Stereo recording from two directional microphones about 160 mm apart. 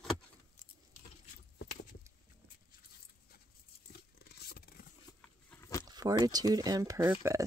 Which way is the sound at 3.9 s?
80° left.